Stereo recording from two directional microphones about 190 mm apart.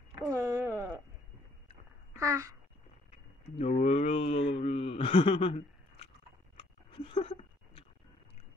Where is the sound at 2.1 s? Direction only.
15° right (ahead or behind).